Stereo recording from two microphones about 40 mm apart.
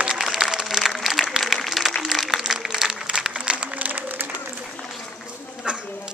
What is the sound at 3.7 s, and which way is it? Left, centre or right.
Applause, right.